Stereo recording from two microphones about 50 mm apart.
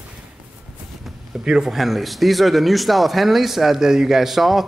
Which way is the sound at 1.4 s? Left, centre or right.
Centre.